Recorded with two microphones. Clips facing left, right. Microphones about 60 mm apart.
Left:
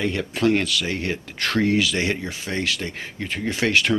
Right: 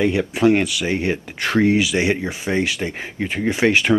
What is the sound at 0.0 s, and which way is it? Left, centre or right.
Speech, centre.